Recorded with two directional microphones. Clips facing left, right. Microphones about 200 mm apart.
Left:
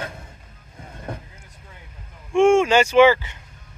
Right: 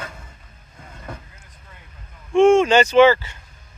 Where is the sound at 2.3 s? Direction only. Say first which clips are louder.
Right 2 dB; 10° left (ahead or behind).